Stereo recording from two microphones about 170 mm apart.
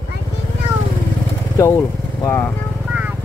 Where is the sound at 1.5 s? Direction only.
20° left (ahead or behind).